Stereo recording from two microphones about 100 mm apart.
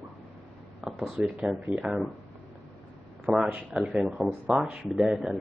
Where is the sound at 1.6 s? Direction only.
20° right (ahead or behind).